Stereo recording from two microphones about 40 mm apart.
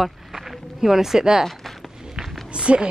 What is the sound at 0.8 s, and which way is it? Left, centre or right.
Speech, centre.